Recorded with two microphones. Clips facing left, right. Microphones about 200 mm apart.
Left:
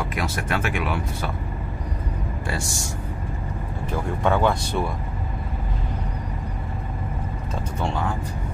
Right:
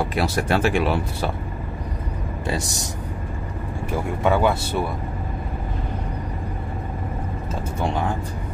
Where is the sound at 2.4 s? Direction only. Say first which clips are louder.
Right 5 dB; 20° right (ahead or behind).